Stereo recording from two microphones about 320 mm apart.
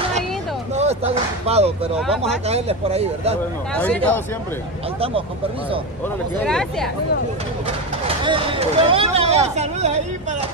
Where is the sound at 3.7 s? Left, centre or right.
Centre.